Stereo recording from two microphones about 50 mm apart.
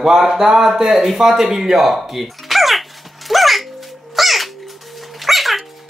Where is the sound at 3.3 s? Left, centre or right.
Centre.